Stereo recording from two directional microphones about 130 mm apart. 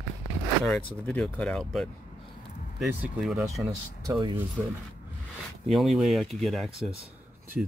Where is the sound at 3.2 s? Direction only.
Centre (ahead or behind).